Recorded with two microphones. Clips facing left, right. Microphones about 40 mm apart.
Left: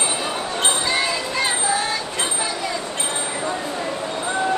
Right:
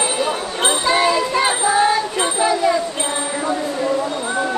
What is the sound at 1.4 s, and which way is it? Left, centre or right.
Music, right.